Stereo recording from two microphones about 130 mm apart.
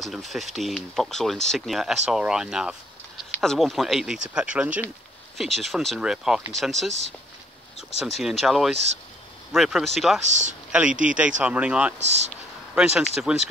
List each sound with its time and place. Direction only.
0.0 s speech: centre (ahead or behind)
8.0 s speech: 5° right (ahead or behind)
10.2 s speech: 65° right (ahead or behind)
10.7 s speech: 10° right (ahead or behind)
12.0 s speech: 60° right (ahead or behind)
12.7 s speech: 5° right (ahead or behind)